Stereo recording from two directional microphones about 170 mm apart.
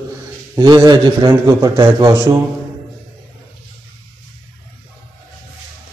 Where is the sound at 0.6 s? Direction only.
25° right (ahead or behind).